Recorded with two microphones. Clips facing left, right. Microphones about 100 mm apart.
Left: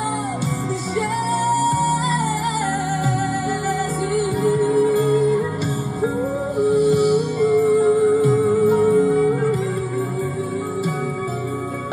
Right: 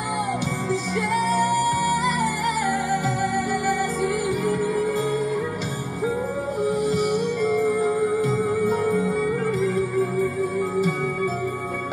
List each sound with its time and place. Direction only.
8.6 s music: 20° left (ahead or behind)